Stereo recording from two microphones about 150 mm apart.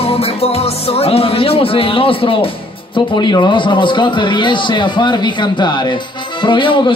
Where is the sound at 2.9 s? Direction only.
30° left (ahead or behind).